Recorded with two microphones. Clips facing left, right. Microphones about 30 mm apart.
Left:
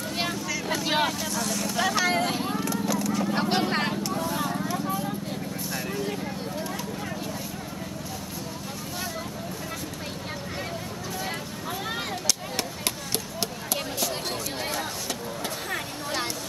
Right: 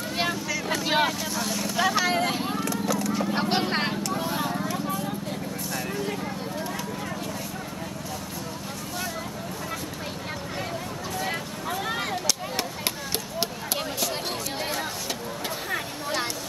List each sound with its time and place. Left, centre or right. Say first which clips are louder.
0.2 s vehicle: right 3 dB; centre
3.1 s vehicle: even; centre
4.2 s vehicle: even; right
4.5 s vehicle: even; centre
11.9 s a sound: even; centre